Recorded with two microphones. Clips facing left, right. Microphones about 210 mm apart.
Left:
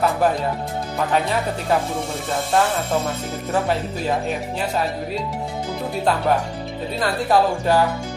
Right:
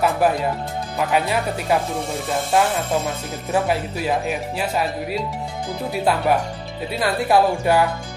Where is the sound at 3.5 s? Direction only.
10° right (ahead or behind).